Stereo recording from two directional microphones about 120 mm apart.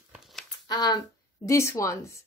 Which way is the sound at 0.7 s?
35° left (ahead or behind).